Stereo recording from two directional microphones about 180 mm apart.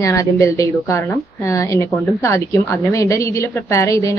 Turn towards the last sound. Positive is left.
turn(degrees=15)  # may be behind; listen again after turning